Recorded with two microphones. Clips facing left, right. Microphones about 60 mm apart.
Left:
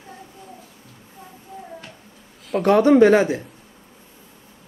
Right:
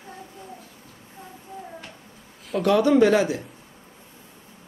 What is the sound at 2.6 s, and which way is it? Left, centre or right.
Speech, left.